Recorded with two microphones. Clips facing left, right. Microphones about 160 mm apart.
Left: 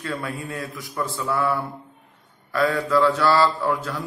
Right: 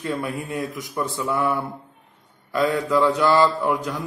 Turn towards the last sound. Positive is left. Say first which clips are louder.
# right 1 dB
turn(degrees=-15)  # may be behind; listen again after turning